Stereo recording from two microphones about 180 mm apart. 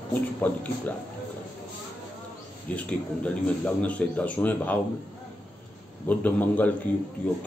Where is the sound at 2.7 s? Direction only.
5° left (ahead or behind).